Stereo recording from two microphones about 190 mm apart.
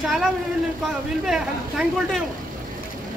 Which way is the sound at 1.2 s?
5° right (ahead or behind).